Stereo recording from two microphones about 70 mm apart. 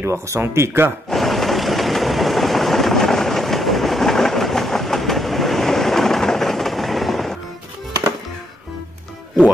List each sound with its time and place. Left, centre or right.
0.0 s speech: right
1.1 s vehicle: centre